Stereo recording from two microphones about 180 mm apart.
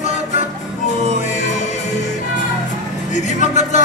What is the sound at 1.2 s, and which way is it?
Music, 45° left (ahead or behind).